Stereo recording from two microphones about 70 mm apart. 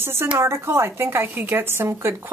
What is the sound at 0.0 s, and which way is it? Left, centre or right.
Speech, right.